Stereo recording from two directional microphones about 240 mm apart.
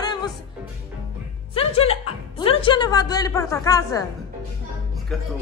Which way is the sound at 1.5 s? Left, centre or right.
Left.